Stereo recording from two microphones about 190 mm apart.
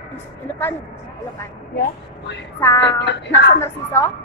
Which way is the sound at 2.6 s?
20° left (ahead or behind).